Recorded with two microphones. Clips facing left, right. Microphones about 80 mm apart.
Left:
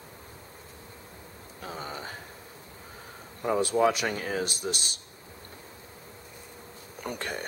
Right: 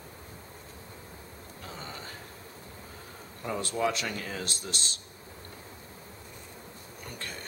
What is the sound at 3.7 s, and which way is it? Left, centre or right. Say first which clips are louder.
Speech: left 5 dB; left.